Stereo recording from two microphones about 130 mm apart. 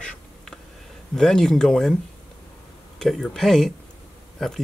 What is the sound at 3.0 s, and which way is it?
Speech, 5° left (ahead or behind).